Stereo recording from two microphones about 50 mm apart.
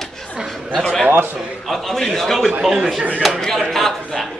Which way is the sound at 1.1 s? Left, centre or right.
Right.